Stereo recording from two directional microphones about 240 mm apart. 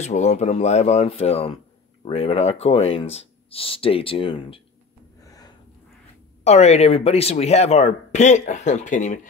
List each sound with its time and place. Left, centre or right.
0.0 s speech: left
5.2 s snort: centre
6.4 s speech: left